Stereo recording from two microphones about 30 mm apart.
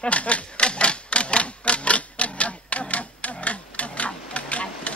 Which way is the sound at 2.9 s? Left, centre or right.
Left.